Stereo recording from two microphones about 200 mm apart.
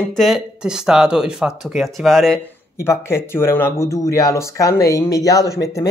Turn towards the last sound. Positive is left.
turn(degrees=15)  # may be behind; listen again after turning